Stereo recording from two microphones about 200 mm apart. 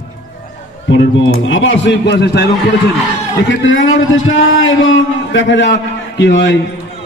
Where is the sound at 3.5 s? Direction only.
70° left (ahead or behind).